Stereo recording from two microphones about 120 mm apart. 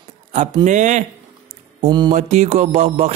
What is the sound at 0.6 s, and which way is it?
Music, 90° right.